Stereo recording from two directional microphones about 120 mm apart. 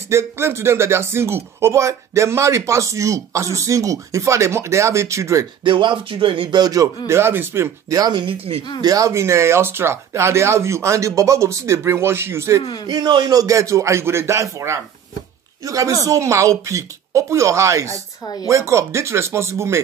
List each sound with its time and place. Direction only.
0.1 s speech: 20° right (ahead or behind)
5.6 s speech: 40° right (ahead or behind)
7.1 s speech: 20° right (ahead or behind); by 8.6 s 50° right (ahead or behind)
8.8 s speech: 30° right (ahead or behind)
12.8 s speech: 35° right (ahead or behind)
18.2 s speech: 35° left (ahead or behind)
18.5 s speech: 25° right (ahead or behind)